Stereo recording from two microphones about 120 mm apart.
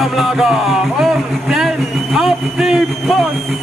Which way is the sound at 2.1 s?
5° right (ahead or behind).